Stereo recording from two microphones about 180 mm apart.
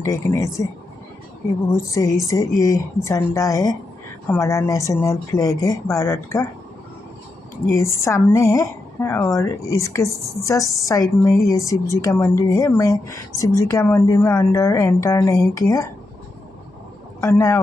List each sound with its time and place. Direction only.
0.0 s a woman's voice: 15° left (ahead or behind)
1.7 s a woman's voice: 15° left (ahead or behind)
7.7 s a woman's voice: 15° left (ahead or behind)
17.2 s speech: 15° left (ahead or behind)